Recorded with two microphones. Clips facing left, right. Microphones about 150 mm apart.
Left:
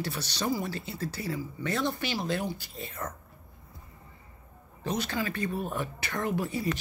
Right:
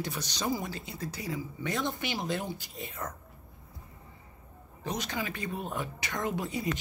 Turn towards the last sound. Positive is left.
turn(degrees=-20)  # may be behind; listen again after turning